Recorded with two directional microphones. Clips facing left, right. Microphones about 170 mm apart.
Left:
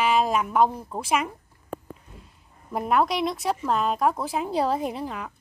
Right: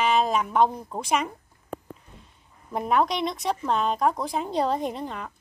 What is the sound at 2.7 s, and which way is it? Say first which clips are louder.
Speech: left 1 dB; centre (ahead or behind).